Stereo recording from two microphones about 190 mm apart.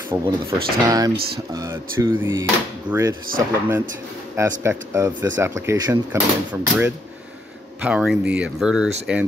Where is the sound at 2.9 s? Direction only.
25° right (ahead or behind).